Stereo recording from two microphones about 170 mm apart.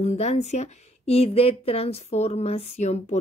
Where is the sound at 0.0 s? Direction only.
40° left (ahead or behind).